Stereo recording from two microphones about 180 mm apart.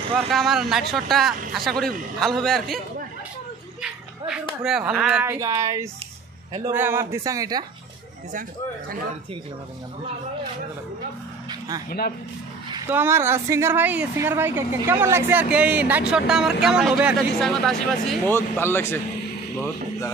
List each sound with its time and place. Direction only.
0.3 s a man's voice: centre (ahead or behind)
4.6 s a woman's voice: 5° right (ahead or behind); by 7.6 s 20° right (ahead or behind)
8.3 s speech: 50° right (ahead or behind)
11.4 s vehicle: 20° right (ahead or behind)
12.9 s a woman's voice: 15° right (ahead or behind); by 18.9 s 15° left (ahead or behind)